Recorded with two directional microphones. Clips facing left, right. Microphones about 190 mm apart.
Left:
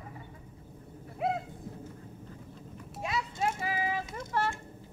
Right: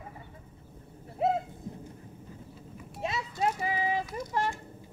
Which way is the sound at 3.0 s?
25° right (ahead or behind).